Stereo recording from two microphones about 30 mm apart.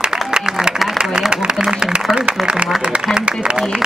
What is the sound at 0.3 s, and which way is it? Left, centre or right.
Applause, right.